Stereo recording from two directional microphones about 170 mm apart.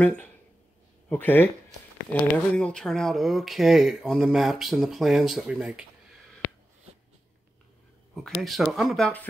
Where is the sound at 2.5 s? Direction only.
5° left (ahead or behind).